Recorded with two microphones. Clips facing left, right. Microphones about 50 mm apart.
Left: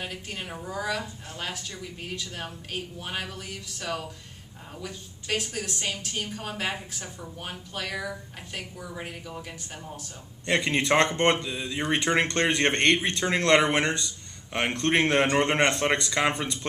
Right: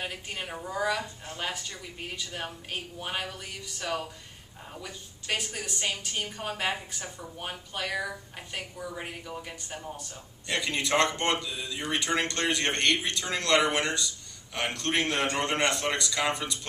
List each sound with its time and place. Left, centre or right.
0.0 s a woman's voice: centre
10.4 s speech: left